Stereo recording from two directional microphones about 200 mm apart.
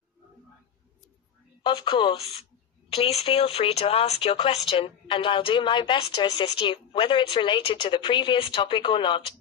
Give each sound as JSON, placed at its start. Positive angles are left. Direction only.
{"t": 1.6, "sound": "speech", "side_deg": 20}